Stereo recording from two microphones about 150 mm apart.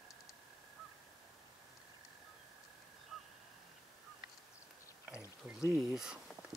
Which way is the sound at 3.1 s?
Centre (ahead or behind).